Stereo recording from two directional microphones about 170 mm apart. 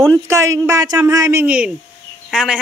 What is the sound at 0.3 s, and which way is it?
Speech, 20° right (ahead or behind).